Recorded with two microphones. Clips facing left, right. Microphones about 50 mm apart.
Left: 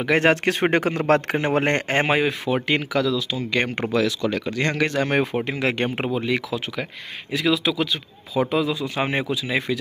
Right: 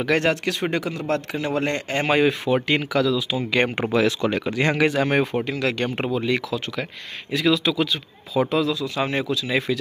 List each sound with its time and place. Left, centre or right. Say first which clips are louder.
0.2 s speech: left 4 dB; left
2.1 s speech: right 2 dB; centre
4.0 s speech: right 2 dB; right; by 5.4 s centre
5.4 s speech: left 1 dB; left
6.1 s speech: right 1 dB; centre
8.6 s speech: even; left
9.5 s speech: right 1 dB; centre